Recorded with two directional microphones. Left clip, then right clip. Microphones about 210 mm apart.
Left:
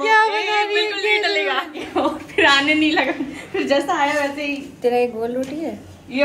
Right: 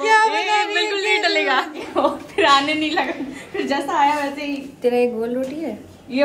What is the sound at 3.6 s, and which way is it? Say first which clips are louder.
A woman's voice: even; 10° right (ahead or behind).